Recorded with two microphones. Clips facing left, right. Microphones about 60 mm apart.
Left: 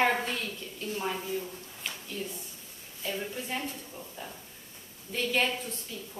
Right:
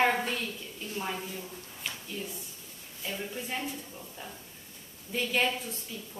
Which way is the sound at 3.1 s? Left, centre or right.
Centre.